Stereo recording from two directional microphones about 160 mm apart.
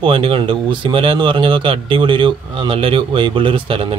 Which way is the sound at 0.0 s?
35° right (ahead or behind).